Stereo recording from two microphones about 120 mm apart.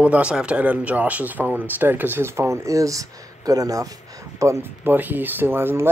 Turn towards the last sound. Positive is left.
turn(degrees=-20)  # may be behind; listen again after turning